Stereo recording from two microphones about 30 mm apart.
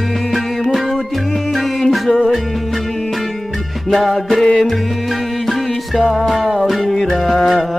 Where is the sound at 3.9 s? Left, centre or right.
Centre.